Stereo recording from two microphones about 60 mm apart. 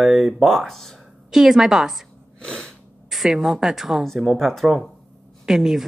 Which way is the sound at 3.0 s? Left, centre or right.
Centre.